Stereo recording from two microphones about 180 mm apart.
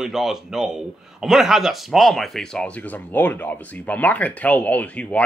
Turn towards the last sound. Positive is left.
turn(degrees=5)  # may be behind; listen again after turning